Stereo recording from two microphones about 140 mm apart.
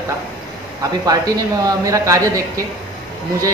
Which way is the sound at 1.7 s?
25° right (ahead or behind).